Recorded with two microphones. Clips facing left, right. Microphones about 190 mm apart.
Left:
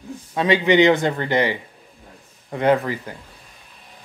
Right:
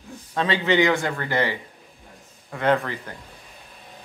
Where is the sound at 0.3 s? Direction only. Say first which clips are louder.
Left 5 dB; 15° left (ahead or behind).